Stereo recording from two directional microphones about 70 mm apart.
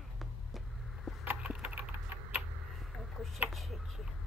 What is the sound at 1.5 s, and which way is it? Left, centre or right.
Typing, centre.